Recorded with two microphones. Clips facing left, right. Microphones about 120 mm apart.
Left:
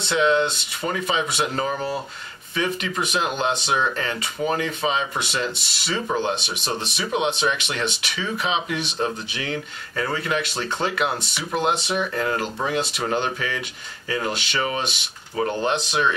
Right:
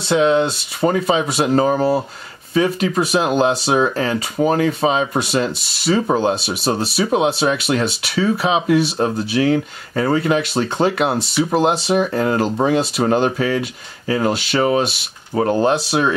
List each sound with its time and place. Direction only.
0.1 s speech: 35° right (ahead or behind)